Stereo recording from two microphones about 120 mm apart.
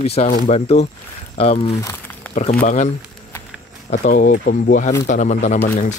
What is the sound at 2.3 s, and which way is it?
Speech, 90° left.